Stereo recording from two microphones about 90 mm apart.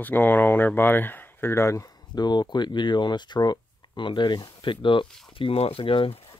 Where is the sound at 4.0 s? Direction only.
60° left (ahead or behind).